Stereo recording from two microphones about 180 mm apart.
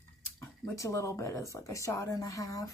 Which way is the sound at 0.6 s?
20° left (ahead or behind).